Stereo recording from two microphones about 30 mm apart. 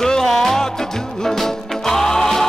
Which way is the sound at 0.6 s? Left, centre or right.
Centre.